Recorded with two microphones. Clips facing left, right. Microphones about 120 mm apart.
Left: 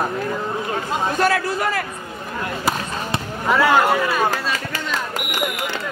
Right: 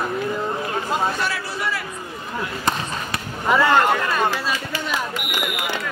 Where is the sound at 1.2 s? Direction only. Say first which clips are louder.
Left 7 dB; 50° left (ahead or behind).